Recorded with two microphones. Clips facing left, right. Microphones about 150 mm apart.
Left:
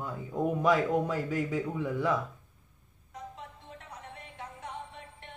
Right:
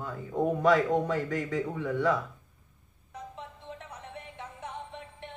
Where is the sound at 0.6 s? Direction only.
15° left (ahead or behind).